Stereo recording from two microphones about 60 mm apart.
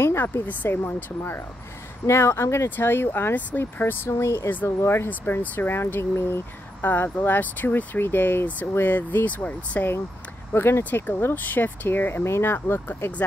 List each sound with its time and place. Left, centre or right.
0.0 s a sound: left
0.7 s speech: left
2.0 s speech: left
2.8 s speech: left
4.1 s speech: left
4.6 s speech: left